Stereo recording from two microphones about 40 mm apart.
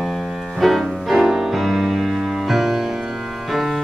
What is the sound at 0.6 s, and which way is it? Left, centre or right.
Music, centre.